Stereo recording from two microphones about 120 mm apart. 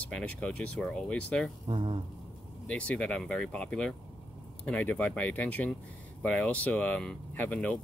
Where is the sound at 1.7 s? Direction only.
45° right (ahead or behind).